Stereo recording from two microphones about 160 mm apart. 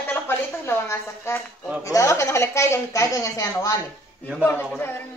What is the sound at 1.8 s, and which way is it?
A woman's voice, 20° left (ahead or behind).